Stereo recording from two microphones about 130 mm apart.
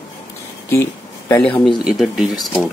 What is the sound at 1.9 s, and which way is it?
Speech, 5° right (ahead or behind).